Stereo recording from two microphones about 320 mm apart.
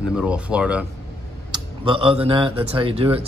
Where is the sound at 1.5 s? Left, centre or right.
Centre.